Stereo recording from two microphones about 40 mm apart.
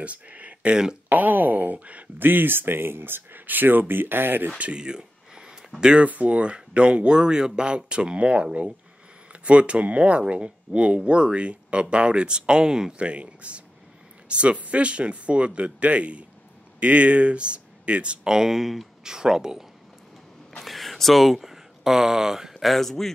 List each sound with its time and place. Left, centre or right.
0.0 s speech: right
1.0 s speech: right
2.1 s speech: right
4.7 s a sound: right
5.9 s speech: right; by 12.9 s centre
12.9 s speech: right
18.3 s speech: centre
19.0 s speech: centre
20.6 s speech: centre
22.8 s speech: centre